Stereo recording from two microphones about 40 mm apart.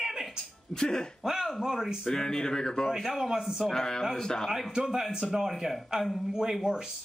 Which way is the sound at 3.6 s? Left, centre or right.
Centre.